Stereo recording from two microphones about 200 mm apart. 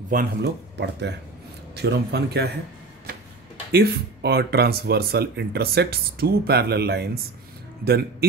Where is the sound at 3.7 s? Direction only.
50° right (ahead or behind).